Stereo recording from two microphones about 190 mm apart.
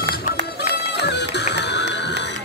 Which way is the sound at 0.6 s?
65° left (ahead or behind).